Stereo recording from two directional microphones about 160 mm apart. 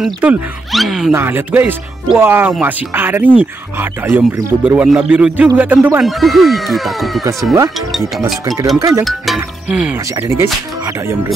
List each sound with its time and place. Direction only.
0.0 s speech: 5° right (ahead or behind)
1.1 s speech: 15° right (ahead or behind)
6.0 s speech: centre (ahead or behind)
8.7 s speech: 20° right (ahead or behind)
9.0 s speech: centre (ahead or behind); by 10.5 s 15° right (ahead or behind)